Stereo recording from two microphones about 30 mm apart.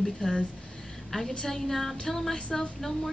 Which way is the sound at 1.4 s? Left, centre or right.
Centre.